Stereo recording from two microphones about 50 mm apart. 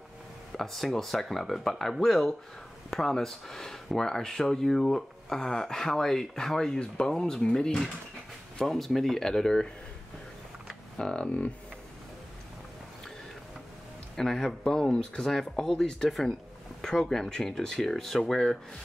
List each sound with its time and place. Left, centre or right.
0.5 s speech: centre
11.0 s speech: centre
14.1 s speech: centre